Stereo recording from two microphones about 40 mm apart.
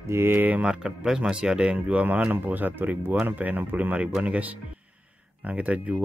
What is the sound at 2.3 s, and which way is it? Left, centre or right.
Speech, right.